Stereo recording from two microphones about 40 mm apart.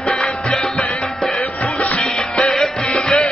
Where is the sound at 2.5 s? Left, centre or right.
Centre.